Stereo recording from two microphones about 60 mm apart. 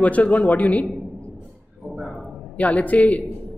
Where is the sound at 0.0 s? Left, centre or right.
Left.